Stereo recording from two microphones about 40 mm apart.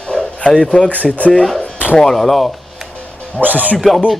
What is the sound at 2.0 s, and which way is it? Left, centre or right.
Speech, centre.